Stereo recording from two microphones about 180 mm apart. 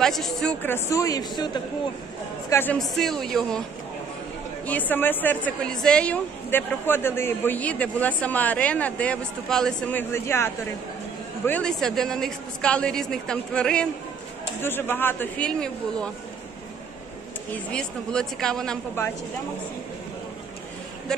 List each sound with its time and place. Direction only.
0.0 s speech: centre (ahead or behind); by 1.6 s 25° left (ahead or behind)
2.5 s a woman's voice: 10° left (ahead or behind)
4.6 s a woman's voice: 10° left (ahead or behind)
17.6 s a woman's voice: 5° left (ahead or behind)